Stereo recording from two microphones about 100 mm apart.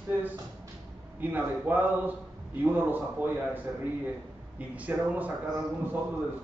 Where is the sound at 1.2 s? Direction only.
20° right (ahead or behind).